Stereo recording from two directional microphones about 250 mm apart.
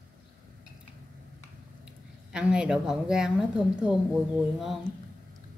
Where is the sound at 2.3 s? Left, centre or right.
Centre.